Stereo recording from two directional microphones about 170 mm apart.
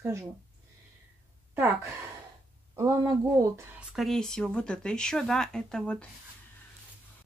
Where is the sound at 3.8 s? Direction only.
Centre (ahead or behind).